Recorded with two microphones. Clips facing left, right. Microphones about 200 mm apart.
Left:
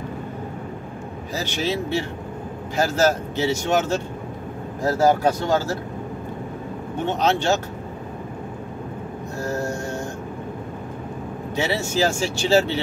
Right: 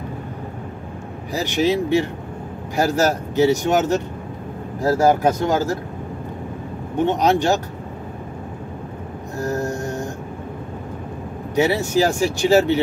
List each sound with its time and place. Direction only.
1.3 s speech: 15° right (ahead or behind)
5.0 s speech: 15° right (ahead or behind)
7.0 s speech: 15° right (ahead or behind)
9.4 s mantra: 15° right (ahead or behind)
11.5 s speech: 15° right (ahead or behind)